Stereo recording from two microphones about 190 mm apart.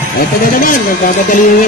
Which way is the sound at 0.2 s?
45° left (ahead or behind).